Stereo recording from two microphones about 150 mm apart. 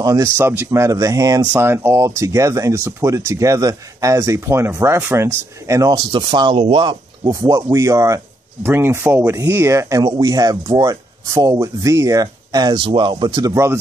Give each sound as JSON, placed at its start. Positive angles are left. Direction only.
{"t": 0.0, "sound": "speech", "side_deg": -20}
{"t": 7.2, "sound": "speech", "side_deg": -20}